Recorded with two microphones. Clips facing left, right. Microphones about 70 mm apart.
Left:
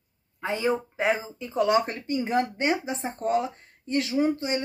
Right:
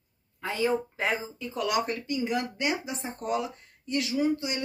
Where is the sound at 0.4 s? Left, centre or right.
Left.